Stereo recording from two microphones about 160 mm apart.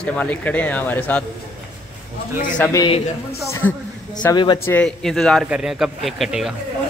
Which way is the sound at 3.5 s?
20° left (ahead or behind).